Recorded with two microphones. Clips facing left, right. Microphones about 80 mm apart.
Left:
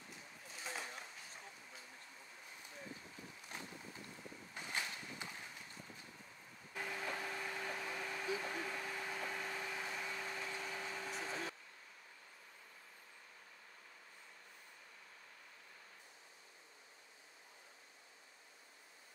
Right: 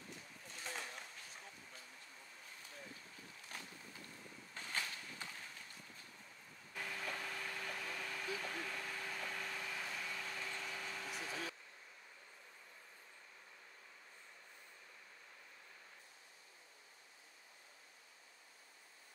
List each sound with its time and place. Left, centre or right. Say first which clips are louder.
0.5 s a sound: left 1 dB; centre
3.5 s boat: left 2 dB; left
4.6 s vehicle: left 1 dB; centre
6.7 s vehicle: left 2 dB; centre
11.1 s vehicle: left 1 dB; left